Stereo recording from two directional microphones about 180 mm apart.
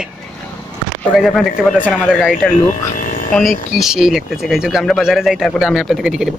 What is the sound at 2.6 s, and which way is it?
Vehicle, 45° left (ahead or behind).